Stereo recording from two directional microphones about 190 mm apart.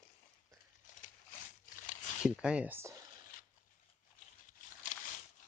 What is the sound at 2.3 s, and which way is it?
Speech, 5° right (ahead or behind).